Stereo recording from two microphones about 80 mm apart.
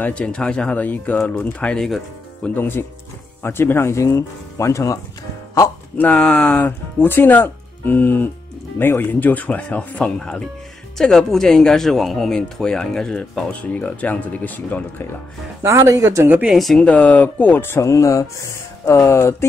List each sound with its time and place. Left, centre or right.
0.0 s speech: centre
2.4 s speech: left
5.9 s speech: centre
15.6 s speech: right
16.4 s speech: centre
16.8 s speech: centre; by 19.3 s left